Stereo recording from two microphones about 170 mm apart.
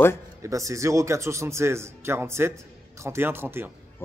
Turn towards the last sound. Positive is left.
turn(degrees=-15)  # may be behind; listen again after turning